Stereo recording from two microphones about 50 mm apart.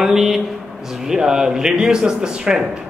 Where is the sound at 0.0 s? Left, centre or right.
Centre.